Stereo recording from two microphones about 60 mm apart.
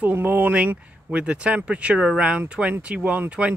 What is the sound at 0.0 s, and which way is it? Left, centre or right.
Speech, right.